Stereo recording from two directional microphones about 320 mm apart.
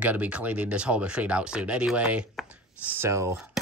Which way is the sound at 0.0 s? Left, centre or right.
Centre.